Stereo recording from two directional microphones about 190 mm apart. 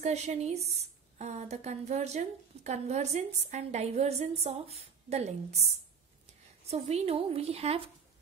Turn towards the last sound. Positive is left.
turn(degrees=-30)  # may be behind; listen again after turning